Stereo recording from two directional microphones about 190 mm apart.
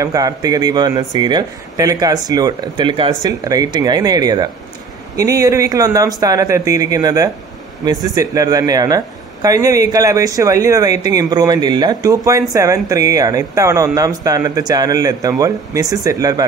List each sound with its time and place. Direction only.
0.0 s speech: 20° right (ahead or behind)